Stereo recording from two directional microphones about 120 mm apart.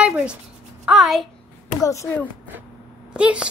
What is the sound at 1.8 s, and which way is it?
Speech, 25° left (ahead or behind).